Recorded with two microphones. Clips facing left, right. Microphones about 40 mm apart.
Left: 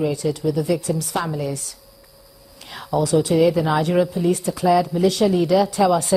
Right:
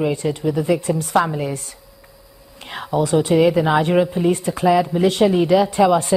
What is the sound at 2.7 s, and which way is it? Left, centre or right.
A woman's voice, right.